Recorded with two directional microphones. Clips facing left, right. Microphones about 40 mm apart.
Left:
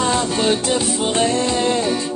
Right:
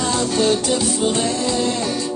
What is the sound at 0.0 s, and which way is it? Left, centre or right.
Music, left.